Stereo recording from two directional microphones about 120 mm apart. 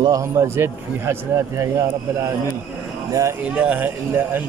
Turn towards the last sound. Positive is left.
turn(degrees=-15)  # may be behind; listen again after turning